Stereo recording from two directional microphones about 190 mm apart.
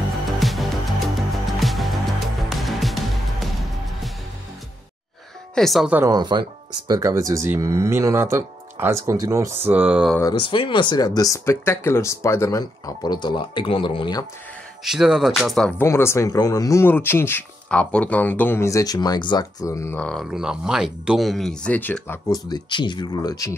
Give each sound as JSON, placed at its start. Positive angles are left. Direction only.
{"t": 0.4, "sound": "music", "side_deg": 0}
{"t": 5.5, "sound": "speech", "side_deg": 0}
{"t": 6.1, "sound": "speech", "side_deg": -20}
{"t": 10.4, "sound": "speech", "side_deg": 25}
{"t": 14.9, "sound": "speech", "side_deg": -5}
{"t": 15.9, "sound": "speech", "side_deg": 15}